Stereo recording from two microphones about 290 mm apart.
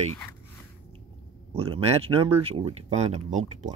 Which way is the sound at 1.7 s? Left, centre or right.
Centre.